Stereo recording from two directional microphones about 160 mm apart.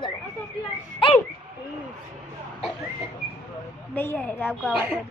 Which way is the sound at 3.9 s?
10° left (ahead or behind).